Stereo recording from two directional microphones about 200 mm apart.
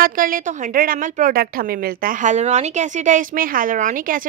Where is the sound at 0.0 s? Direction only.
45° right (ahead or behind).